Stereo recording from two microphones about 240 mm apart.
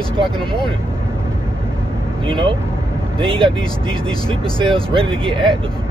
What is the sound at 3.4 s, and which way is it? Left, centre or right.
Speech, centre.